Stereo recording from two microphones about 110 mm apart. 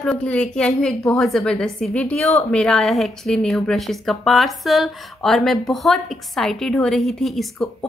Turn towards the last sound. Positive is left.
turn(degrees=0)  # may be behind; listen again after turning